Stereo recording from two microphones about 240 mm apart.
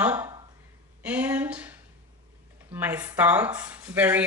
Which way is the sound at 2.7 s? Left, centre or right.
Centre.